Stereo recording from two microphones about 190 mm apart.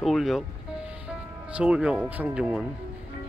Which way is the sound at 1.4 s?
5° right (ahead or behind).